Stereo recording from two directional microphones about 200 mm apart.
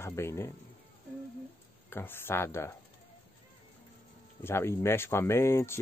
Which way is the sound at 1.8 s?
10° left (ahead or behind).